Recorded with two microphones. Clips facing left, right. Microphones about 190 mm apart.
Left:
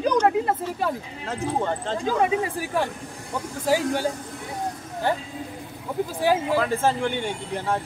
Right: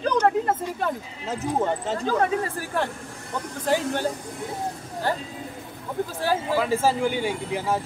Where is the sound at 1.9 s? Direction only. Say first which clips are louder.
Left 3 dB; 10° left (ahead or behind).